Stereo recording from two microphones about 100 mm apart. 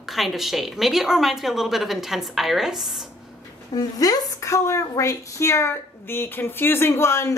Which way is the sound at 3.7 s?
40° left (ahead or behind).